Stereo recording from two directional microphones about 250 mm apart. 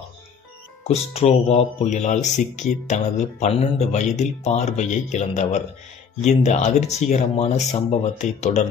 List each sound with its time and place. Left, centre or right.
0.8 s speech: left